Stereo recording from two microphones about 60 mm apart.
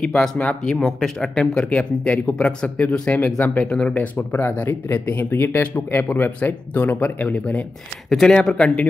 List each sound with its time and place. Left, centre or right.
0.1 s speech: centre
0.4 s speech: left
3.6 s speech: centre
4.3 s speech: left
8.1 s speech: centre